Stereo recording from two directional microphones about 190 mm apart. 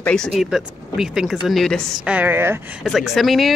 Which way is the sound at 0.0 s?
5° left (ahead or behind).